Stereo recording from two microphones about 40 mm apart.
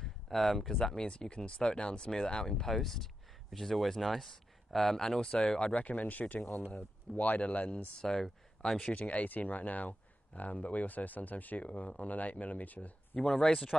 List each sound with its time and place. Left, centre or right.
0.0 s a sound: centre
0.7 s speech: centre
2.6 s speech: centre
5.2 s speech: centre
5.8 s speech: left
8.0 s speech: centre
8.9 s speech: left